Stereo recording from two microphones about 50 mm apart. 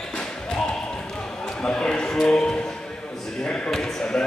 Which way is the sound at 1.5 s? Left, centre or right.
Centre.